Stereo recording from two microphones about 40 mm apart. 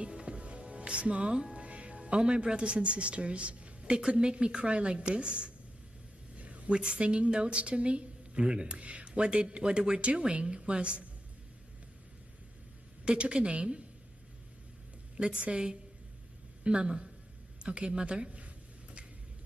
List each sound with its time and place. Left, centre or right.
0.0 s music: right
1.5 s music: right
2.1 s speech: right
6.3 s a sound: right
6.7 s speech: right
13.0 s speech: right
15.1 s speech: right